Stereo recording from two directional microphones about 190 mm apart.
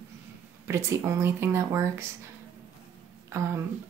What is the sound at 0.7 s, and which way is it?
Speech, 15° right (ahead or behind).